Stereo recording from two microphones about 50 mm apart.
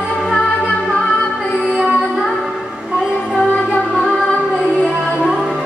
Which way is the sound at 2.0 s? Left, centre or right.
Centre.